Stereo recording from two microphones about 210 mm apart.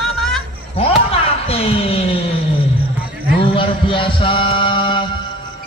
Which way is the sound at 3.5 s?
25° left (ahead or behind).